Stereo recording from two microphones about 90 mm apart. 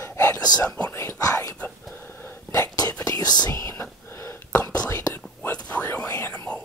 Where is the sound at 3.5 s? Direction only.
30° left (ahead or behind).